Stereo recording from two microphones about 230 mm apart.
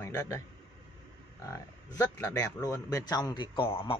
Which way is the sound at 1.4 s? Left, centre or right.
Centre.